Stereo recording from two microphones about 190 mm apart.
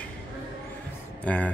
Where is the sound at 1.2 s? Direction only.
5° left (ahead or behind).